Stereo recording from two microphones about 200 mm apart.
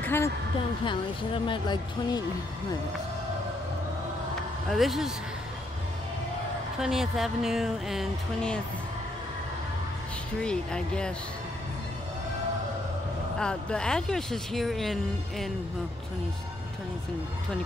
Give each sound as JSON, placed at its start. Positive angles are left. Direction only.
{"t": 0.0, "sound": "a sound", "side_deg": 10}
{"t": 0.8, "sound": "speech", "side_deg": 25}
{"t": 4.6, "sound": "speech", "side_deg": 0}
{"t": 6.8, "sound": "speech", "side_deg": 0}
{"t": 10.4, "sound": "speech", "side_deg": 5}
{"t": 13.4, "sound": "speech", "side_deg": 5}